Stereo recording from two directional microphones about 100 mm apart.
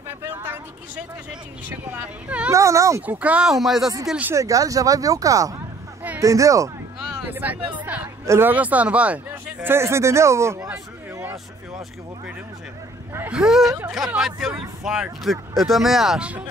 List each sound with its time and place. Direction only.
0.2 s a sound: 15° right (ahead or behind)
1.7 s speech: 20° right (ahead or behind)
2.5 s speech: 30° right (ahead or behind)
3.1 s speech: 15° right (ahead or behind)
4.4 s speech: 35° right (ahead or behind)
7.2 s speech: 20° right (ahead or behind)
13.3 s speech: 5° right (ahead or behind)
13.7 s speech: 25° right (ahead or behind)
13.9 s speech: 5° right (ahead or behind)